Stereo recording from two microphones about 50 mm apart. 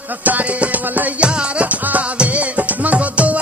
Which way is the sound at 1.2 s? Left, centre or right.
Right.